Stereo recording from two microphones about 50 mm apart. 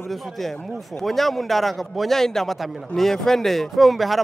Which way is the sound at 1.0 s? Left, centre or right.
Centre.